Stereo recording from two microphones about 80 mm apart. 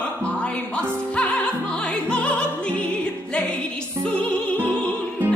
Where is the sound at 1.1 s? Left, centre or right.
Centre.